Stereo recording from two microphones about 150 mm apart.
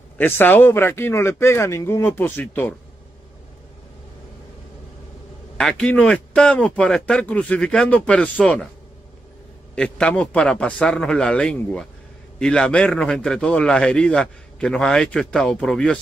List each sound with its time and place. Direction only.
0.2 s speech: 15° left (ahead or behind)
5.6 s speech: 5° left (ahead or behind)
9.8 s a man's voice: 5° left (ahead or behind)